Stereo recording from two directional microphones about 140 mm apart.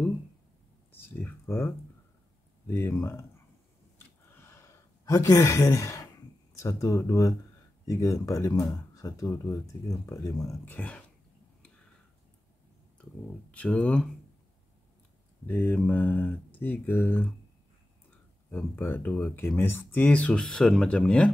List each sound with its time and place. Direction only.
1.2 s speech: 15° left (ahead or behind)
2.7 s speech: 15° left (ahead or behind)
4.3 s sigh: 20° left (ahead or behind)
6.5 s speech: 25° left (ahead or behind)
13.5 s speech: 10° left (ahead or behind)
15.4 s speech: 10° left (ahead or behind)
18.5 s speech: 15° left (ahead or behind)